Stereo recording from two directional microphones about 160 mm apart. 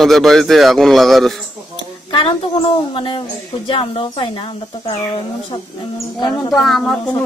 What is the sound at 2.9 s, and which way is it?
A woman's voice, 30° left (ahead or behind).